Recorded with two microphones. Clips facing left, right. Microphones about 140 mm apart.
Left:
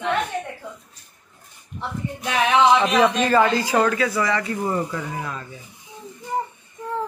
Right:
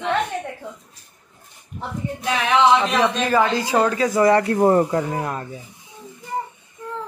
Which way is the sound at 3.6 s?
25° right (ahead or behind).